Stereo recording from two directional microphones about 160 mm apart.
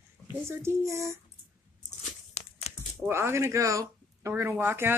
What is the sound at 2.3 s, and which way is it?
Crumpling, 40° left (ahead or behind).